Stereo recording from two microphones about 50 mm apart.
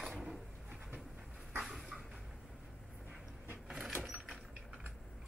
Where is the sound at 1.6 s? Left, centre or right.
Centre.